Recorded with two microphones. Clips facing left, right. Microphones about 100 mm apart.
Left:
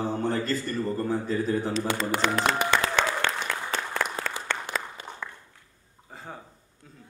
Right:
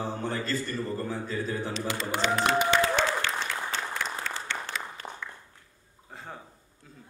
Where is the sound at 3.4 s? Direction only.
50° left (ahead or behind).